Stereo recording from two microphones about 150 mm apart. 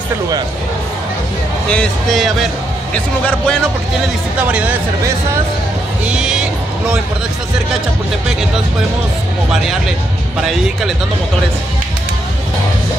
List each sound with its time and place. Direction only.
1.7 s speech: 5° left (ahead or behind)
4.4 s speech: 10° right (ahead or behind)
6.0 s speech: 5° right (ahead or behind)
9.5 s speech: 5° right (ahead or behind)